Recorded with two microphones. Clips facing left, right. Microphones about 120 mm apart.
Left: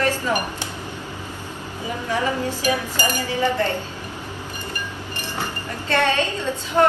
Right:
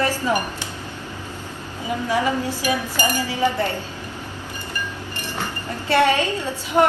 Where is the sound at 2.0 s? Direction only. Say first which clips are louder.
Right 1 dB; 15° right (ahead or behind).